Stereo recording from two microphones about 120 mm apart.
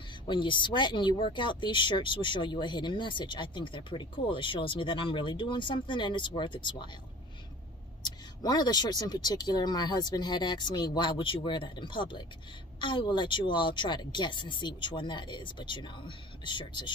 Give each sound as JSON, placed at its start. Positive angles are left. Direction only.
{"t": 0.3, "sound": "speech", "side_deg": 40}
{"t": 8.0, "sound": "speech", "side_deg": 35}